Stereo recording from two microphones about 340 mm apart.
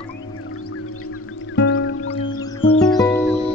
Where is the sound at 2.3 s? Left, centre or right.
Centre.